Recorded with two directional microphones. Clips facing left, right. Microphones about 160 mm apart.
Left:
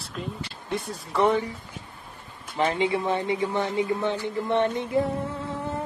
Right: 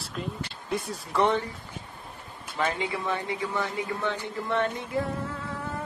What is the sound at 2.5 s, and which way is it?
A man's voice, 25° left (ahead or behind).